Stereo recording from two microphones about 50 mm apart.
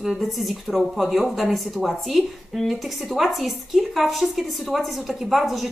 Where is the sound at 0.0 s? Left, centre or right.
Centre.